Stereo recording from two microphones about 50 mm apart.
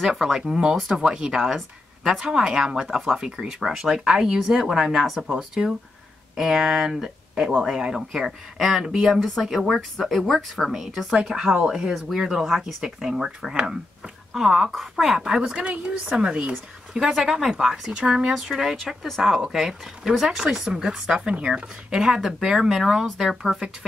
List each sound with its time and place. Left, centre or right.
0.0 s a woman's voice: centre
0.4 s a woman's voice: centre
10.7 s a woman's voice: centre
13.0 s speech: centre
18.8 s a woman's voice: centre